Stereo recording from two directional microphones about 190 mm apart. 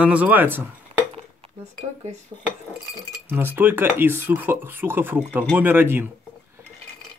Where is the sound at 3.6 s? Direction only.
10° right (ahead or behind).